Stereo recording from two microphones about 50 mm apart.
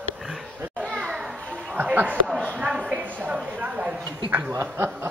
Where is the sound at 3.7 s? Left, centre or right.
Right.